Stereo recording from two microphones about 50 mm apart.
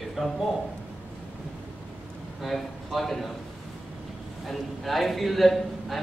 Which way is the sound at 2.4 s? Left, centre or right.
Centre.